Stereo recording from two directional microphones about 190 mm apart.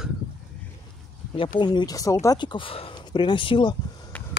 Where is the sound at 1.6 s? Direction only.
20° left (ahead or behind).